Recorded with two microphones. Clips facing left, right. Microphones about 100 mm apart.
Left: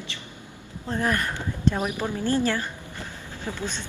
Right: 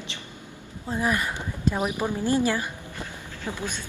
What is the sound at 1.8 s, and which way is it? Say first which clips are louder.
A woman's voice: right 1 dB; 20° right (ahead or behind).